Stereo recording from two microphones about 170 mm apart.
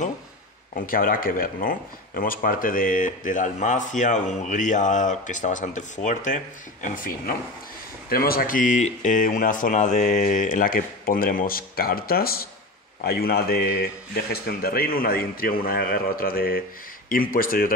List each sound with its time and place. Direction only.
0.7 s speech: 55° left (ahead or behind)